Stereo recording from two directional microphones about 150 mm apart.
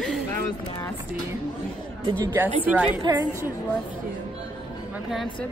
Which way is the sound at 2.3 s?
10° right (ahead or behind).